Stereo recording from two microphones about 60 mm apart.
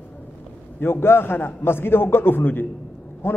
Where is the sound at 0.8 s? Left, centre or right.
Left.